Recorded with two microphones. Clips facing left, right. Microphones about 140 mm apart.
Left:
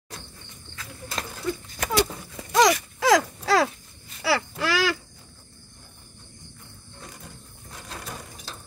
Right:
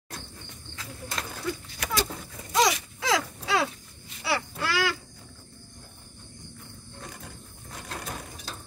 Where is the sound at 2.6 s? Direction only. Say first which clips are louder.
Left 6 dB; 85° left.